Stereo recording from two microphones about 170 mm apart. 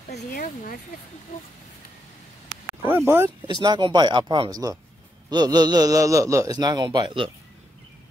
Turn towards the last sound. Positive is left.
turn(degrees=-30)  # may be behind; listen again after turning